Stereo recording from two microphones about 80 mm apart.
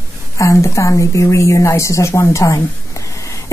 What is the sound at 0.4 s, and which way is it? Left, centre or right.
A woman's voice, left.